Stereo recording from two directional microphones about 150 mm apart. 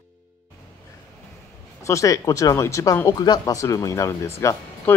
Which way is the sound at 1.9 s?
20° left (ahead or behind).